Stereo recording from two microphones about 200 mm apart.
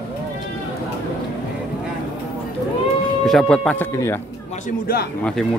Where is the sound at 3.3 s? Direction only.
5° left (ahead or behind).